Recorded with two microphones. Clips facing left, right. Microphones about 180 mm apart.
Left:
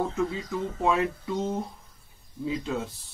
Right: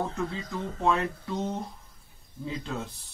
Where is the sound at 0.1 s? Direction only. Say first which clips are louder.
Left 4 dB; 5° left (ahead or behind).